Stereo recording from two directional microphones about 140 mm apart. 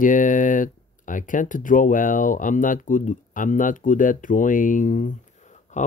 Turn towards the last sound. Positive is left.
turn(degrees=60)  # may be behind; listen again after turning